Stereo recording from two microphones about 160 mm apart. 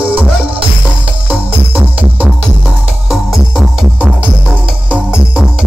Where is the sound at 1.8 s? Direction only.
10° right (ahead or behind).